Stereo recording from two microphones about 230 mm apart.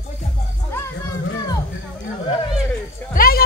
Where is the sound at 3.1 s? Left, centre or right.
Left.